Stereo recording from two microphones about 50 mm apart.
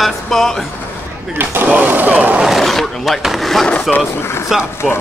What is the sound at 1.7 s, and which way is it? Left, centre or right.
Speech, right.